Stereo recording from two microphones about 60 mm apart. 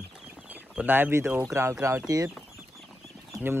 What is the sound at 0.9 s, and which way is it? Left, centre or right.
Speech, right.